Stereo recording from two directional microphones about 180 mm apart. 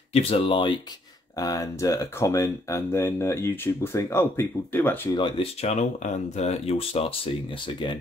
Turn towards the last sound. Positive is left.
turn(degrees=25)  # may be behind; listen again after turning